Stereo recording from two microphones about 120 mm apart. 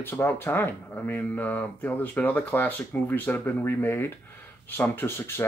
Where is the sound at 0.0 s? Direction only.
20° left (ahead or behind).